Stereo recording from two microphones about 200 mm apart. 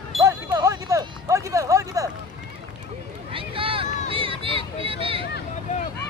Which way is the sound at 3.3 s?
25° right (ahead or behind).